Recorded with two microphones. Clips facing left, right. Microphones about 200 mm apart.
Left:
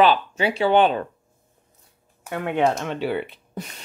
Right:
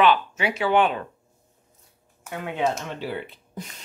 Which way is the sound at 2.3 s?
60° left (ahead or behind).